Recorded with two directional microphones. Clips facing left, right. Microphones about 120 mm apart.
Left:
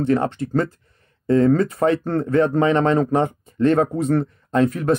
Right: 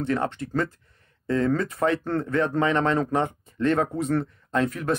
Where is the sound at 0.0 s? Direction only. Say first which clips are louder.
Left 6 dB; 35° left (ahead or behind).